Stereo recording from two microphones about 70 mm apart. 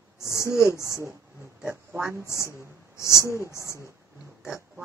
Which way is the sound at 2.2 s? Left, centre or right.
Left.